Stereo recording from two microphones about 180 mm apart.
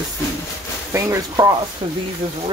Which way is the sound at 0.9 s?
15° right (ahead or behind).